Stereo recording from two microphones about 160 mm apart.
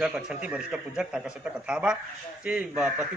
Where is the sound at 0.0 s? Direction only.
5° right (ahead or behind).